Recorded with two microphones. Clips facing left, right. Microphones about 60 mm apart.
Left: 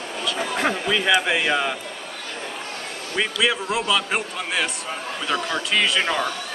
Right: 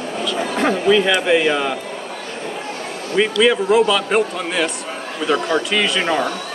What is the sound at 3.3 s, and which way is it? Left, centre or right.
A man's voice, centre.